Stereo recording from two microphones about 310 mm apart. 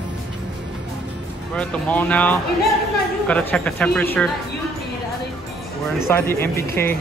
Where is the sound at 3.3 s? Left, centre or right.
Centre.